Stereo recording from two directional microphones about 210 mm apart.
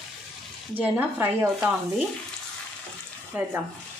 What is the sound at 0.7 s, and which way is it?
Speech, 10° right (ahead or behind).